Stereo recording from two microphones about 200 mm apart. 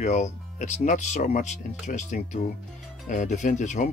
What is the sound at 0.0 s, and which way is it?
Speech, 35° left (ahead or behind).